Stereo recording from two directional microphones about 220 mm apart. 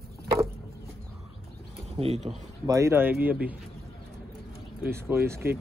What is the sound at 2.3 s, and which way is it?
Speech, 20° right (ahead or behind).